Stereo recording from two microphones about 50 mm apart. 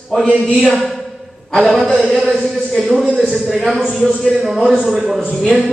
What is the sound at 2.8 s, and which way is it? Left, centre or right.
Speech, centre.